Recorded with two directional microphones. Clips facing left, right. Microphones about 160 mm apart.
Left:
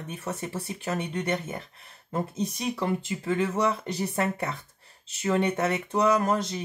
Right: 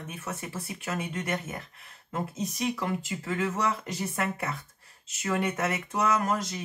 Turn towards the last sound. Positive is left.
turn(degrees=30)  # may be behind; listen again after turning